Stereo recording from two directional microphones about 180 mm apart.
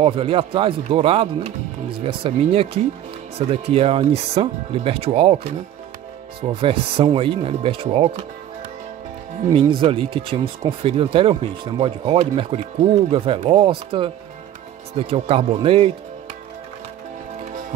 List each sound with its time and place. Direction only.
0.0 s speech: 30° right (ahead or behind)
9.5 s speech: 30° right (ahead or behind)